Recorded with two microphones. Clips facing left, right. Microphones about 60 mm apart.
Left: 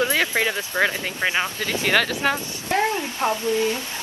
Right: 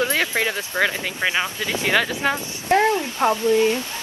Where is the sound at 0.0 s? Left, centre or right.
Right.